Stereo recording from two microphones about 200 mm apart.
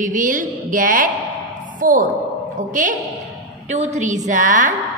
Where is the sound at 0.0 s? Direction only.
40° right (ahead or behind).